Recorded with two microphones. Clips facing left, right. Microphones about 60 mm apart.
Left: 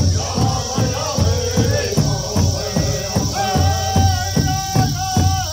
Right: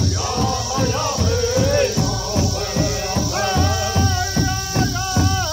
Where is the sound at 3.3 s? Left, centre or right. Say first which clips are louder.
Left 1 dB; right.